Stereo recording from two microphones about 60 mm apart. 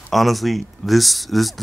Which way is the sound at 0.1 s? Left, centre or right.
Centre.